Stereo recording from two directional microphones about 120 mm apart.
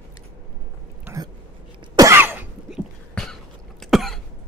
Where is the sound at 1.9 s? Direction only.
20° right (ahead or behind).